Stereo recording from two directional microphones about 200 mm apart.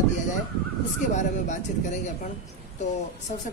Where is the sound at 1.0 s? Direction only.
40° left (ahead or behind).